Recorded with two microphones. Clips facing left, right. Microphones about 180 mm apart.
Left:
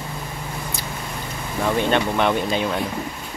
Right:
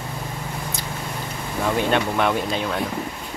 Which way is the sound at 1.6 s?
5° right (ahead or behind).